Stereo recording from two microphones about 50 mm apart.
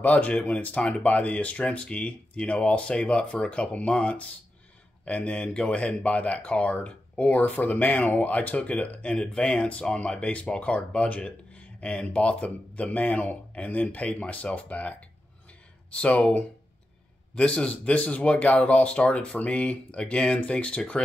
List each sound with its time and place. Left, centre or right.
0.0 s speech: left